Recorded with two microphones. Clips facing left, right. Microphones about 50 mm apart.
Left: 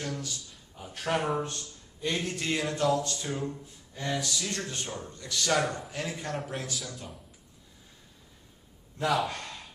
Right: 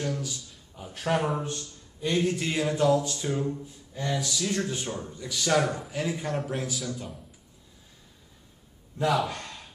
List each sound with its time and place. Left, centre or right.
0.0 s a man's voice: centre